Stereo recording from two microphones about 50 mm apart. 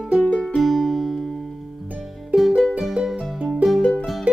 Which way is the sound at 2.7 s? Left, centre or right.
Centre.